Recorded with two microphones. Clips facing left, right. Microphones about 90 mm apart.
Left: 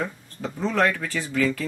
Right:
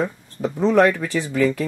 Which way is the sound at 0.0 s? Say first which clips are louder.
Right 6 dB; 15° right (ahead or behind).